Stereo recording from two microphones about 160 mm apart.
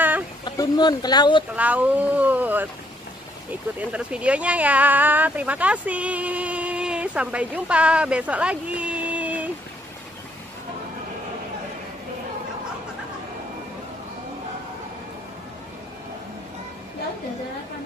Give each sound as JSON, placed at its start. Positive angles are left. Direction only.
{"t": 0.5, "sound": "speech", "side_deg": 25}
{"t": 1.5, "sound": "speech", "side_deg": -10}
{"t": 3.9, "sound": "speech", "side_deg": -10}